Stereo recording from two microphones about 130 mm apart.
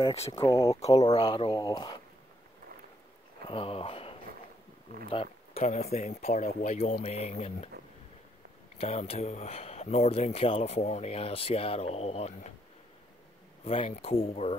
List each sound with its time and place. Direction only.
0.3 s speech: 25° left (ahead or behind)
3.4 s speech: 45° left (ahead or behind)
5.5 s speech: 60° left (ahead or behind)
8.7 s speech: 50° left (ahead or behind)
13.7 s speech: 50° left (ahead or behind)